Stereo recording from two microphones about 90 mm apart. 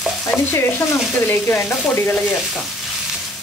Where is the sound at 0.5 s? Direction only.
25° left (ahead or behind).